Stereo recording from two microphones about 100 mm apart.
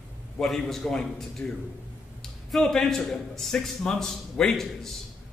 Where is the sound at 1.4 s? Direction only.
20° left (ahead or behind).